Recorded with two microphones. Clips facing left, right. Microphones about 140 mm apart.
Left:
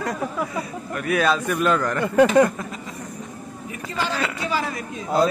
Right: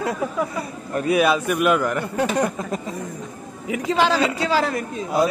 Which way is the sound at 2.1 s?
90° left.